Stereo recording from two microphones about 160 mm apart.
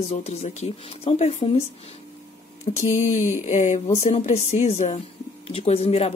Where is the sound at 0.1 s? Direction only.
45° left (ahead or behind).